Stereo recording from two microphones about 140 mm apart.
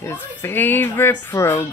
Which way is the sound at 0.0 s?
15° left (ahead or behind).